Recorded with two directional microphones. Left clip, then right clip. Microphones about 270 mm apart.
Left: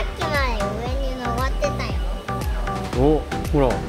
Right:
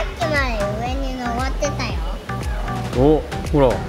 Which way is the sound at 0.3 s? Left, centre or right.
Centre.